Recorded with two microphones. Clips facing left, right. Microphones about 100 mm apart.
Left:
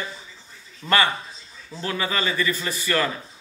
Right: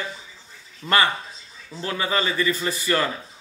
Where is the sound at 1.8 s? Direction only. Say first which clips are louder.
Right 1 dB; 30° right (ahead or behind).